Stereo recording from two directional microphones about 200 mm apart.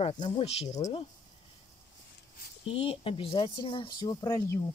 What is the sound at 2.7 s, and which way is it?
Speech, 30° left (ahead or behind).